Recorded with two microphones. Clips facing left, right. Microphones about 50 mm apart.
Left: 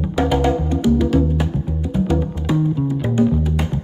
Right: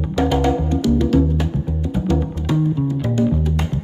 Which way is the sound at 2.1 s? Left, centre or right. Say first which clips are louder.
Right 3 dB; centre.